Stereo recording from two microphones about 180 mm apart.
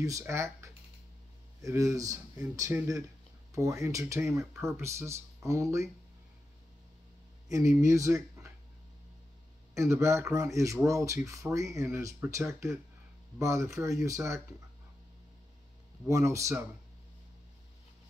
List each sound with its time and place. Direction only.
0.0 s speech: 15° right (ahead or behind)
7.5 s speech: 15° right (ahead or behind)
9.8 s speech: 15° right (ahead or behind)
16.1 s speech: 15° right (ahead or behind)